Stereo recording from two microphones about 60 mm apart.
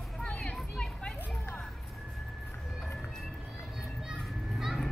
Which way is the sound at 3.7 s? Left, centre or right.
Centre.